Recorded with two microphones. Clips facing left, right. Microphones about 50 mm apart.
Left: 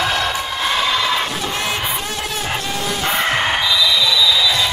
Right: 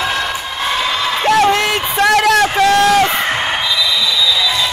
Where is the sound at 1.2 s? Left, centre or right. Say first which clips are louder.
Right 10 dB; right.